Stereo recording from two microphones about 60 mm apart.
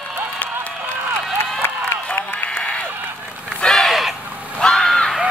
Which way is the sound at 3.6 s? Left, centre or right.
Centre.